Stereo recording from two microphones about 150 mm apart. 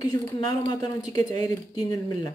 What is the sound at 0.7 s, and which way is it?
Speech, 25° left (ahead or behind).